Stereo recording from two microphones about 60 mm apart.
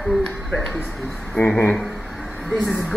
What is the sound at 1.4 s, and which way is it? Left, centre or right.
Speech, left.